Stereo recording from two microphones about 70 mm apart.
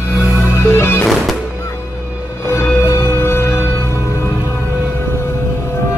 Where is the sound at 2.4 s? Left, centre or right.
Left.